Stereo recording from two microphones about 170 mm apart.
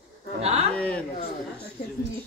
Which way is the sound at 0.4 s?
40° right (ahead or behind).